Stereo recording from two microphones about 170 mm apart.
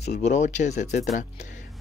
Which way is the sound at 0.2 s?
45° left (ahead or behind).